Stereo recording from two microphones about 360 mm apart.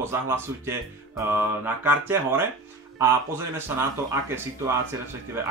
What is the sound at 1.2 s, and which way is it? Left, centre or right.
Mantra, centre.